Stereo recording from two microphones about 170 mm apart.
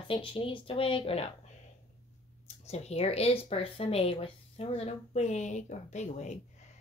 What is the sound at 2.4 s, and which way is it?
Speech, 40° left (ahead or behind).